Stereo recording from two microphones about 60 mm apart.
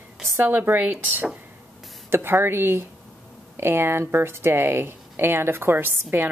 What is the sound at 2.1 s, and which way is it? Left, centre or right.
Speech, right.